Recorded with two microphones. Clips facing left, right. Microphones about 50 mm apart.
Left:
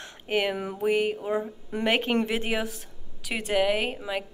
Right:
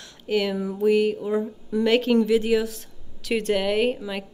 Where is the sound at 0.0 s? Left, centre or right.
Left.